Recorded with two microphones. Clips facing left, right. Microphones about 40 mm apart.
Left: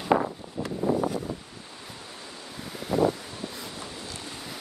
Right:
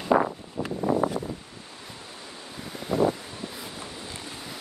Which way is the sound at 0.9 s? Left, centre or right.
Right.